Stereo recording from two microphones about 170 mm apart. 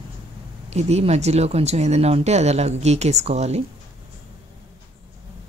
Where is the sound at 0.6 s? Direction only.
40° right (ahead or behind).